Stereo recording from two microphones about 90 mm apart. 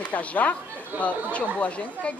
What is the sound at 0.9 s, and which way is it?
Speech, 20° right (ahead or behind).